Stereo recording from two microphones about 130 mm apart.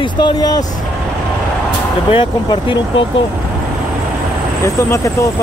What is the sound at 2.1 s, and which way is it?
Speech, 40° left (ahead or behind).